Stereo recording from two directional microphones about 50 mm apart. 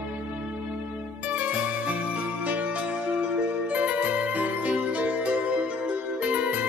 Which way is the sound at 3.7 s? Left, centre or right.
Right.